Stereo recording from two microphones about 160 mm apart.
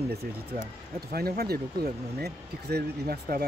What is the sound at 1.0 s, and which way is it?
Speech, 75° right (ahead or behind).